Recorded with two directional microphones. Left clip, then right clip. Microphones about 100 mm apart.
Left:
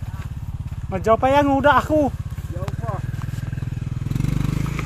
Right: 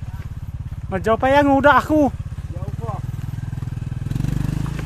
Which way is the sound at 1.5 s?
75° right (ahead or behind).